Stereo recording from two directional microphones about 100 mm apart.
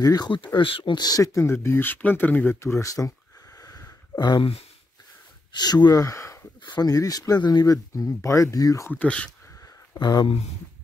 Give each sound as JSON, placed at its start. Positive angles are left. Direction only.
{"t": 0.0, "sound": "speech", "side_deg": 40}
{"t": 0.3, "sound": "speech", "side_deg": 55}
{"t": 0.9, "sound": "speech", "side_deg": 40}
{"t": 2.6, "sound": "speech", "side_deg": 30}
{"t": 3.5, "sound": "a sound", "side_deg": 40}
{"t": 4.4, "sound": "speech", "side_deg": 75}
{"t": 5.5, "sound": "speech", "side_deg": 45}
{"t": 6.6, "sound": "speech", "side_deg": 45}
{"t": 8.9, "sound": "speech", "side_deg": 10}
{"t": 9.9, "sound": "speech", "side_deg": 40}